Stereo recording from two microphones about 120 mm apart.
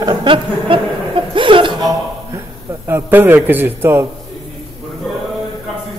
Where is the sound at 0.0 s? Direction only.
40° right (ahead or behind).